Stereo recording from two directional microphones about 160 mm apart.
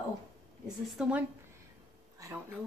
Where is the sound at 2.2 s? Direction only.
20° right (ahead or behind).